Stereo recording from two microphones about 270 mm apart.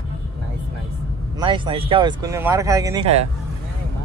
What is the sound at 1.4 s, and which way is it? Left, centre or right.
Speech, centre.